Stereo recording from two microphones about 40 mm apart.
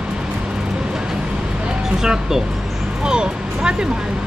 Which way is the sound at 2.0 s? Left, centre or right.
Centre.